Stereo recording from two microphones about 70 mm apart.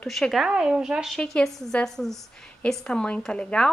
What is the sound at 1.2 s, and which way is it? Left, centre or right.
A woman's voice, centre.